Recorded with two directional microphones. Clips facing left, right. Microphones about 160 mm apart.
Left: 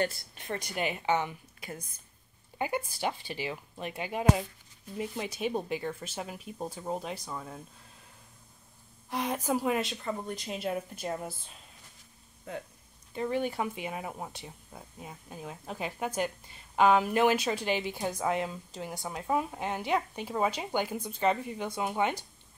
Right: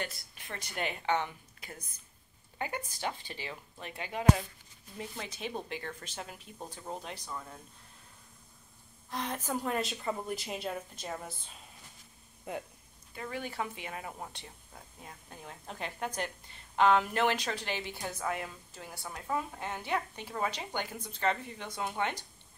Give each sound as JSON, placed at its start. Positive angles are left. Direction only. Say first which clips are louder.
{"t": 0.0, "sound": "a woman's voice", "louder": "left 9 dB", "side_deg": 40}
{"t": 0.6, "sound": "a woman's voice", "louder": "left 2 dB", "side_deg": 10}
{"t": 9.1, "sound": "a woman's voice", "louder": "left 5 dB", "side_deg": 10}
{"t": 10.7, "sound": "a woman's voice", "louder": "left 5 dB", "side_deg": 10}
{"t": 13.1, "sound": "a woman's voice", "louder": "left 9 dB", "side_deg": 25}